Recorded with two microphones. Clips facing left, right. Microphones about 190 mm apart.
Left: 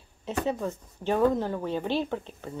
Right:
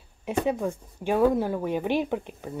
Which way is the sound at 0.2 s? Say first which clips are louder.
Right 3 dB; 15° right (ahead or behind).